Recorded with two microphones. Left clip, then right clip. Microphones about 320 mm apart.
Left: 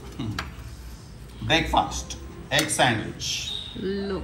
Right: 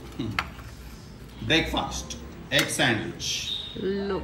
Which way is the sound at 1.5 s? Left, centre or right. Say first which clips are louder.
Left 3 dB; centre.